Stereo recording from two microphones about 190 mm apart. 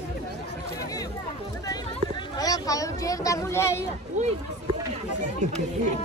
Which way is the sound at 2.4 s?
20° left (ahead or behind).